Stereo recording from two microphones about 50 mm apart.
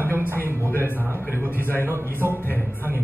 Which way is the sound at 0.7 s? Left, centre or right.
Left.